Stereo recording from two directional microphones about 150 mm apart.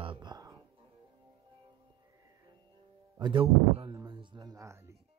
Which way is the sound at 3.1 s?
30° right (ahead or behind).